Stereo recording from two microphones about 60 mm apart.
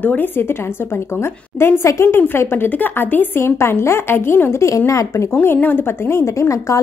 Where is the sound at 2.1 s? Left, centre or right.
Left.